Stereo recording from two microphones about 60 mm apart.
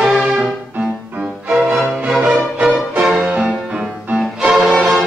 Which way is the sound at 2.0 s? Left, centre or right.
Centre.